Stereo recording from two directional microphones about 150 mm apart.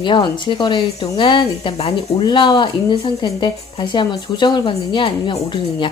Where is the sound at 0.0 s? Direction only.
30° left (ahead or behind).